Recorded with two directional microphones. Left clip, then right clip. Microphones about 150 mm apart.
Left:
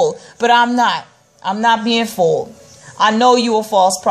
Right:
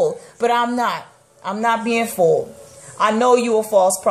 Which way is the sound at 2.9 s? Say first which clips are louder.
Left 3 dB; 20° left (ahead or behind).